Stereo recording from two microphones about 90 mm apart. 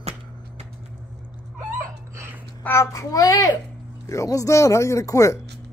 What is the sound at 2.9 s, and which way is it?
Speech, 40° left (ahead or behind).